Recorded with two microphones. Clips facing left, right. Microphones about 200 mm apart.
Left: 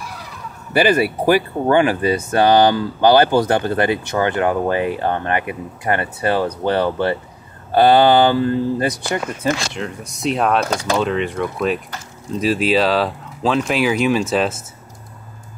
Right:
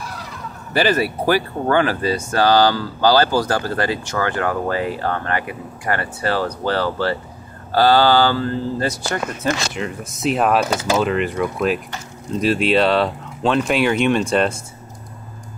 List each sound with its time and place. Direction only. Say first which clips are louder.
0.7 s speech: left 3 dB; 15° left (ahead or behind)
9.8 s speech: right 1 dB; centre (ahead or behind)